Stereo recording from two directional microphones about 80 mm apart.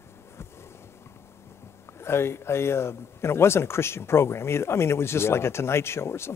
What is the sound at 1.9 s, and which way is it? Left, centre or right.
Speech, left.